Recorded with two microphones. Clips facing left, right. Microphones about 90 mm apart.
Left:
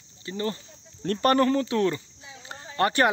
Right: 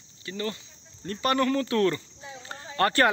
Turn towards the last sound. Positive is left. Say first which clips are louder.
# even
turn(degrees=20)  # may be behind; listen again after turning